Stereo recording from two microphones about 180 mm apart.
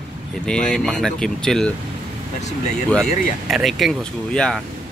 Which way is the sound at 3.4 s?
Centre (ahead or behind).